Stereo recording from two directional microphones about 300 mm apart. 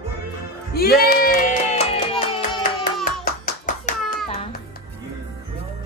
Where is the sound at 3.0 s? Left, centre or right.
Left.